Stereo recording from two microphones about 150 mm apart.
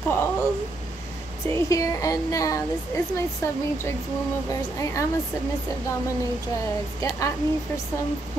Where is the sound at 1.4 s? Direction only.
20° left (ahead or behind).